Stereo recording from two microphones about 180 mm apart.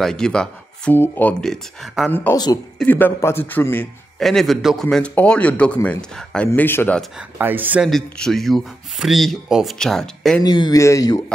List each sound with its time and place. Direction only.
0.0 s speech: 5° left (ahead or behind)
2.3 s speech: 20° left (ahead or behind)
2.8 s a man's voice: 10° left (ahead or behind)
7.0 s speech: 10° right (ahead or behind)
10.4 s speech: 25° left (ahead or behind)